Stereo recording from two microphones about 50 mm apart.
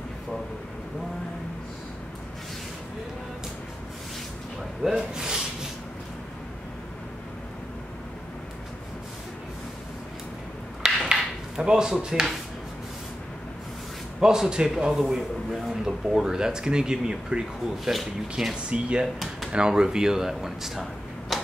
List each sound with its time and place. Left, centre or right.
4.8 s rub: centre
11.1 s a sound: centre
14.2 s speech: centre
18.7 s speech: right; by 21.4 s centre